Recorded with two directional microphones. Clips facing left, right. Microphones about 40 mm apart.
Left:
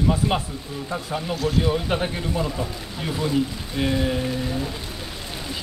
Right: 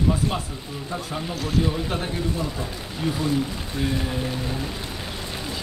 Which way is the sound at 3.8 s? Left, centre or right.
Left.